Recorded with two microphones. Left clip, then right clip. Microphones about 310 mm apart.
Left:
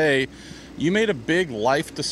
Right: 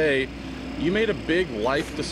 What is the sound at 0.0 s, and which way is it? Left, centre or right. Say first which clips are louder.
Speech: left 2 dB; left.